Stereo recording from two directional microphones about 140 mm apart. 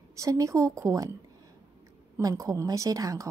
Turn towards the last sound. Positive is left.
turn(degrees=-25)  # may be behind; listen again after turning